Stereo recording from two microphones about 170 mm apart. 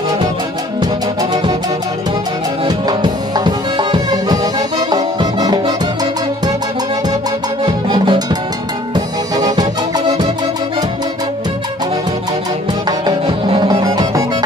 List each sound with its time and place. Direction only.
2.6 s music: 25° right (ahead or behind)
7.6 s music: 25° right (ahead or behind)
12.8 s music: 25° right (ahead or behind)